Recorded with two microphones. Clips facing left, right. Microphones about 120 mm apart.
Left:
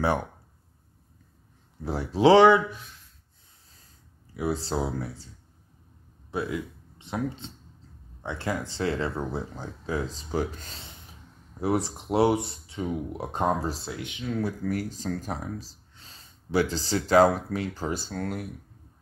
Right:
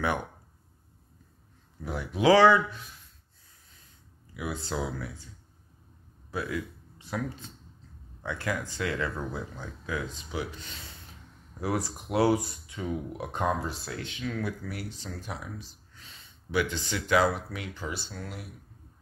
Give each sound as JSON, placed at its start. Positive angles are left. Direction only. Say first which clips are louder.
{"t": 1.8, "sound": "speech", "louder": "left 6 dB", "side_deg": 30}
{"t": 3.7, "sound": "a sound", "louder": "left 1 dB", "side_deg": 35}
{"t": 6.3, "sound": "speech", "louder": "left 3 dB", "side_deg": 25}
{"t": 11.6, "sound": "speech", "louder": "left 4 dB", "side_deg": 25}
{"t": 13.9, "sound": "speech", "louder": "left 3 dB", "side_deg": 15}
{"t": 14.6, "sound": "speech", "louder": "left 8 dB", "side_deg": 45}